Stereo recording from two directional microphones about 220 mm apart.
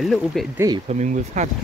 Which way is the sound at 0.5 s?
15° right (ahead or behind).